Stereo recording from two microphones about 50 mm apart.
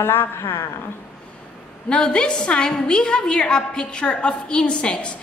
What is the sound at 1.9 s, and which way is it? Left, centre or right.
A woman's voice, centre.